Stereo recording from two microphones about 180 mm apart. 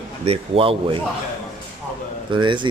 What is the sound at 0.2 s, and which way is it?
Speech, 35° right (ahead or behind).